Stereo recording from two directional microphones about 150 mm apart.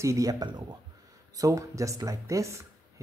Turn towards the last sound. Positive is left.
turn(degrees=-20)  # may be behind; listen again after turning